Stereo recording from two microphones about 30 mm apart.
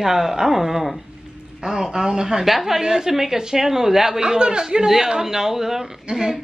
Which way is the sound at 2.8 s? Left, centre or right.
Right.